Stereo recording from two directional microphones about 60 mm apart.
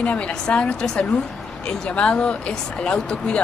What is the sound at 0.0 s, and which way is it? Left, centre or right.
Speech, left.